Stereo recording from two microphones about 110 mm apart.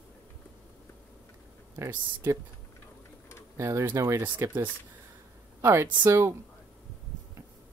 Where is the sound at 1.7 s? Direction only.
25° right (ahead or behind).